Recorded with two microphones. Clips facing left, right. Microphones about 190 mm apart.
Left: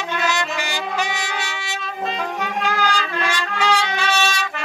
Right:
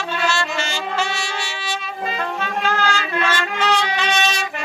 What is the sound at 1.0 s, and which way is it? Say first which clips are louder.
Trumpet: right 1 dB; 15° left (ahead or behind).